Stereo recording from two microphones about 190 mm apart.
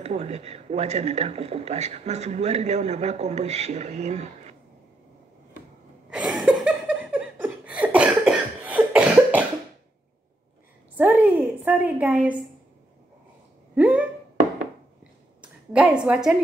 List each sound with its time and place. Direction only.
0.0 s speech: 35° right (ahead or behind)
6.0 s a sound: 5° right (ahead or behind)
7.1 s cough: 5° right (ahead or behind)
11.0 s a woman's voice: 10° right (ahead or behind)
13.7 s a woman's voice: 5° right (ahead or behind)
15.4 s a woman's voice: 5° right (ahead or behind)